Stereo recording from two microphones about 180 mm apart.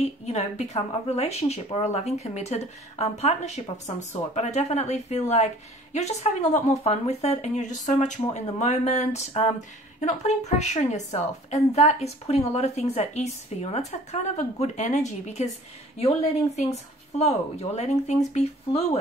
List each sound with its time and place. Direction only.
0.0 s speech: 35° left (ahead or behind)